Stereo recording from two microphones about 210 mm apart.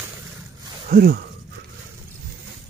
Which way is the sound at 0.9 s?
45° right (ahead or behind).